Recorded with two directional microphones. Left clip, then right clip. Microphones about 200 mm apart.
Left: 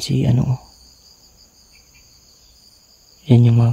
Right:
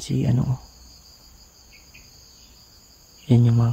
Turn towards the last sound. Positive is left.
turn(degrees=25)  # may be behind; listen again after turning